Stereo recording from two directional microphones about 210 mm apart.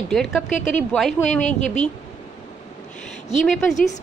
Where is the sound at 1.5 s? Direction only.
35° left (ahead or behind).